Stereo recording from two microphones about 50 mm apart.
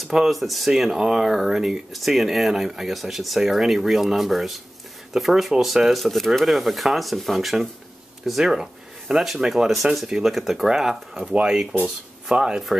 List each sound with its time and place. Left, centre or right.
0.1 s speech: centre
11.2 s speech: right